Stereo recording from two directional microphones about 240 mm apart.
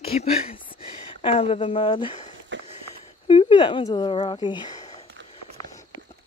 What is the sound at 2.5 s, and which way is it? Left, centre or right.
Walk, right.